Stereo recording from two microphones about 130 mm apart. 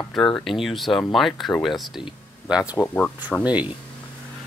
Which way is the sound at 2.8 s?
15° left (ahead or behind).